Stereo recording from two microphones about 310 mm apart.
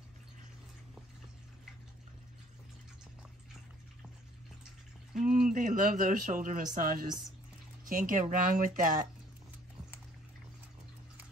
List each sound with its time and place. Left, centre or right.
5.2 s speech: right